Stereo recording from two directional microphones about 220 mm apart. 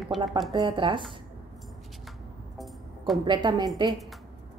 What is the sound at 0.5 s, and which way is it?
Speech, 20° right (ahead or behind).